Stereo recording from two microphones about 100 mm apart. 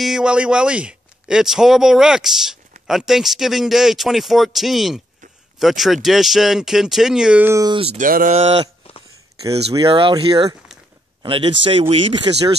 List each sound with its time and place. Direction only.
0.0 s a man's voice: 5° right (ahead or behind)
7.7 s a sound: 85° right
8.8 s a sound: 70° left (ahead or behind)
9.8 s speech: 60° right (ahead or behind)
10.1 s speech: 40° right (ahead or behind)
11.2 s speech: 60° right (ahead or behind)